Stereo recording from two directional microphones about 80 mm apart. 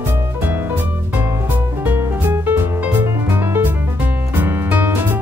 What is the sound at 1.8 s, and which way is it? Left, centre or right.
Music, right.